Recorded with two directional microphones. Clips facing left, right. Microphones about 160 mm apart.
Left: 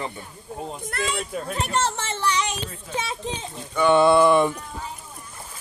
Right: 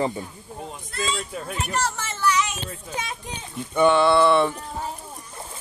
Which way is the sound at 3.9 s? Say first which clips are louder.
Left 5 dB; 15° left (ahead or behind).